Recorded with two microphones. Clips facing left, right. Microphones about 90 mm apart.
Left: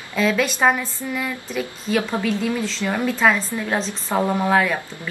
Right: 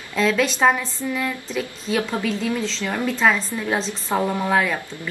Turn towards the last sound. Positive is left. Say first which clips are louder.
# left 2 dB
turn(degrees=0)  # may be behind; listen again after turning